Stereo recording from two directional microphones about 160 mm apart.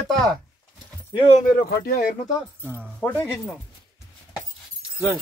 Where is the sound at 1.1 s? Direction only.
40° left (ahead or behind).